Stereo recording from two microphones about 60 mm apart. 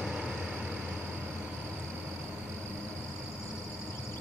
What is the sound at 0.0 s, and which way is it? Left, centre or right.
Vehicle, centre.